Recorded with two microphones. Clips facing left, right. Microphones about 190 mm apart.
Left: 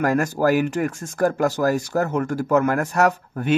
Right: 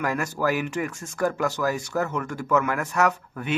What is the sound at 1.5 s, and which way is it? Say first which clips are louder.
Speech: left 5 dB; 40° left (ahead or behind).